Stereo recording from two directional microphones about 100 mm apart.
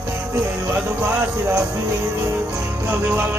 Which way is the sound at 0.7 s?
15° right (ahead or behind).